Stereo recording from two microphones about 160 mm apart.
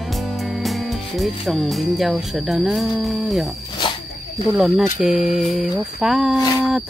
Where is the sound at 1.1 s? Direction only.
Centre (ahead or behind).